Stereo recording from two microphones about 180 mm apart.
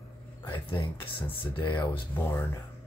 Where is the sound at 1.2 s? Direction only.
30° left (ahead or behind).